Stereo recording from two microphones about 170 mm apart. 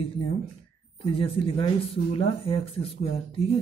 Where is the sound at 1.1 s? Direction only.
35° left (ahead or behind).